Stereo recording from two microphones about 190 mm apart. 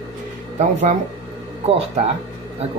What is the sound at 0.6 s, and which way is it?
Speech, 35° right (ahead or behind).